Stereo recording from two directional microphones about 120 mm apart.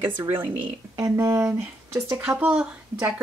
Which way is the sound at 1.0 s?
25° right (ahead or behind).